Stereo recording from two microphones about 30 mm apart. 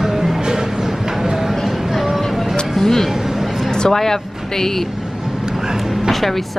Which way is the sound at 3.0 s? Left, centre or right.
Centre.